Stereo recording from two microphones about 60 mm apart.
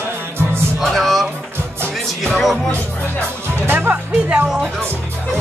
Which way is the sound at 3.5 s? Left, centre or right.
Right.